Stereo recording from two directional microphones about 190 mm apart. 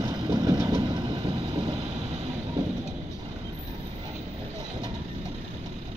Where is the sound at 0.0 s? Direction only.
20° right (ahead or behind).